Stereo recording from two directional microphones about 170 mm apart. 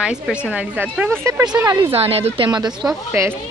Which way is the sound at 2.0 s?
35° right (ahead or behind).